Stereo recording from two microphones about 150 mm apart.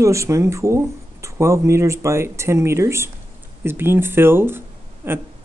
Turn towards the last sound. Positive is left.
turn(degrees=-15)  # may be behind; listen again after turning